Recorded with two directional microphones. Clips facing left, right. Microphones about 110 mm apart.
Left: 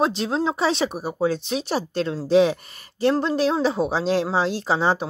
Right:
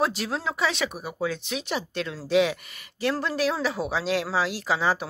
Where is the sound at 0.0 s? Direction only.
25° left (ahead or behind).